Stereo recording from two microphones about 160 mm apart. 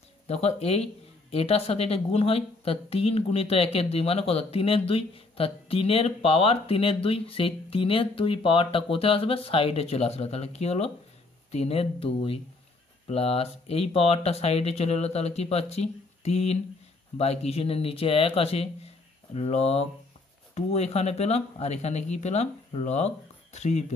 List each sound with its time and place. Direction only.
0.3 s a woman's voice: 40° left (ahead or behind)